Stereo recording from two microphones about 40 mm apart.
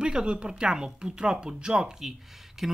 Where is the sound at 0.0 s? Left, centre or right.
Right.